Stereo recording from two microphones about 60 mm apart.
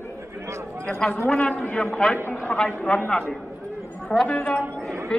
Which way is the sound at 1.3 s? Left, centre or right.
Centre.